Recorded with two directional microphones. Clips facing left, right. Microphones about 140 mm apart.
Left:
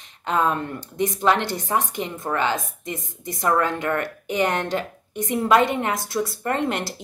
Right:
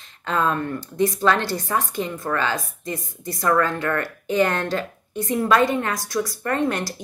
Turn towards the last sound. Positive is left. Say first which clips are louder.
# right 1 dB
turn(degrees=25)  # may be behind; listen again after turning